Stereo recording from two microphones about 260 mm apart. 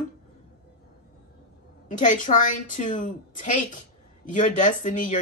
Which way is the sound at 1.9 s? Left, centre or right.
Left.